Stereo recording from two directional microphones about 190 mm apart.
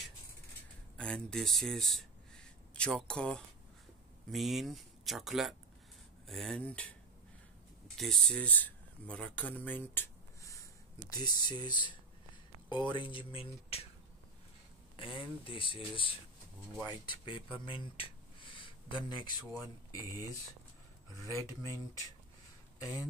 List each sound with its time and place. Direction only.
0.9 s speech: 5° left (ahead or behind)
8.0 s speech: 5° left (ahead or behind); by 13.8 s 30° left (ahead or behind)
15.0 s speech: 25° left (ahead or behind)